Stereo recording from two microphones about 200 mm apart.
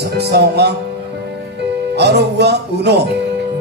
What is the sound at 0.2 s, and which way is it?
Music, 55° right (ahead or behind).